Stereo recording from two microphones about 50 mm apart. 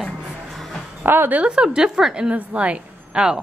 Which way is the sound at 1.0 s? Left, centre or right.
Right.